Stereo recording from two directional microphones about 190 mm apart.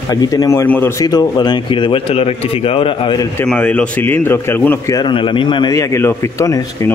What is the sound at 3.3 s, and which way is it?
A man's voice, 5° left (ahead or behind).